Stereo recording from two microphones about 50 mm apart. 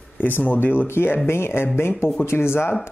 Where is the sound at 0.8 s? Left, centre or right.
Left.